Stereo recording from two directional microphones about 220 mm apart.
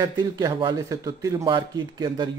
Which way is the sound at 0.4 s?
20° right (ahead or behind).